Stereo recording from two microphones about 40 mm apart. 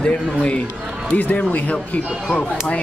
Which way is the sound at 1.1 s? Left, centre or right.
Left.